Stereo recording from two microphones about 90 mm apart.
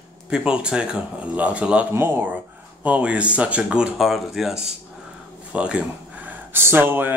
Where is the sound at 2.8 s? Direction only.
15° right (ahead or behind).